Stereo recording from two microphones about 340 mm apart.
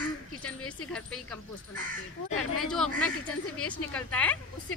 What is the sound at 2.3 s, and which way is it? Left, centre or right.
Speech, left.